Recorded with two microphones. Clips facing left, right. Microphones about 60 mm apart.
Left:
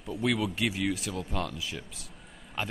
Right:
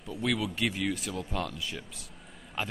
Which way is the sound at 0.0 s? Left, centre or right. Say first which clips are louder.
Left 2 dB; centre.